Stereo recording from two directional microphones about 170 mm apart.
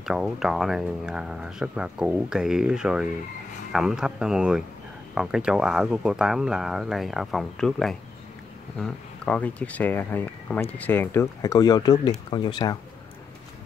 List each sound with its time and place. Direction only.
0.0 s speech: centre (ahead or behind); by 12.7 s 25° left (ahead or behind)